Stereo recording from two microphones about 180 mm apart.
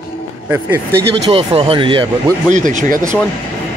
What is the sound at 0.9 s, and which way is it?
Speech, 70° right (ahead or behind).